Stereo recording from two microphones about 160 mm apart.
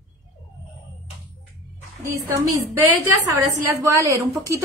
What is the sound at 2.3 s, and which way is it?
A woman's voice, 15° right (ahead or behind).